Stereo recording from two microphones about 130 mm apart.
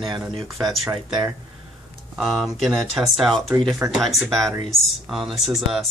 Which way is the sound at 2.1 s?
Centre (ahead or behind).